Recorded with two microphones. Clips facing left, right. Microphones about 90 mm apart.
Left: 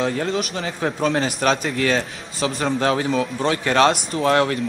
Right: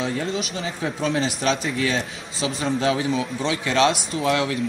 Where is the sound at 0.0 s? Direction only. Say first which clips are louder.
Left 3 dB; 45° left (ahead or behind).